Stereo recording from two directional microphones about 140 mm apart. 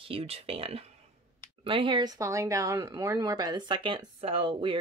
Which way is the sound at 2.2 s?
20° right (ahead or behind).